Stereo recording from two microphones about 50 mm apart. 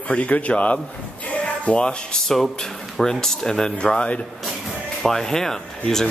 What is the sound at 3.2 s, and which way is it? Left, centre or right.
Speech, centre.